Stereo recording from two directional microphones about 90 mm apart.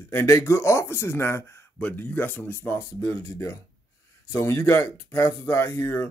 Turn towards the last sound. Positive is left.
turn(degrees=25)  # may be behind; listen again after turning